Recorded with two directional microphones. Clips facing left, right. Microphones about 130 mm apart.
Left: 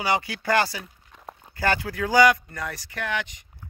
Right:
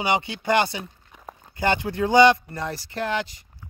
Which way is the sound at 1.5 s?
20° right (ahead or behind).